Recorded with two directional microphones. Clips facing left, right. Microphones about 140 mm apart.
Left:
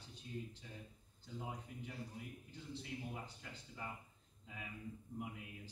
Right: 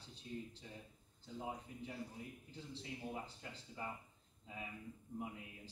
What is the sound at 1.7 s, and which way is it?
A man's voice, 25° right (ahead or behind).